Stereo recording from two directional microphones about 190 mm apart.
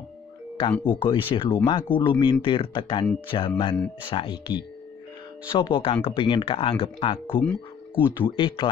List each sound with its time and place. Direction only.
0.7 s speech: 10° left (ahead or behind)
1.0 s speech: 25° left (ahead or behind)
7.3 s speech: 10° left (ahead or behind)
8.3 s speech: 25° left (ahead or behind)